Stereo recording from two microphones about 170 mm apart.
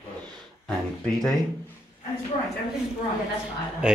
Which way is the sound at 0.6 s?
Centre (ahead or behind).